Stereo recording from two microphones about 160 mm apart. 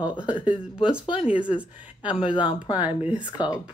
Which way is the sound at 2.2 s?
30° left (ahead or behind).